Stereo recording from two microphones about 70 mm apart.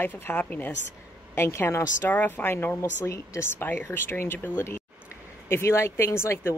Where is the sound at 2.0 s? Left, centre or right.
Left.